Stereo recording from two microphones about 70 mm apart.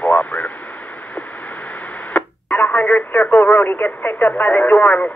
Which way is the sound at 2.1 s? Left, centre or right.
Left.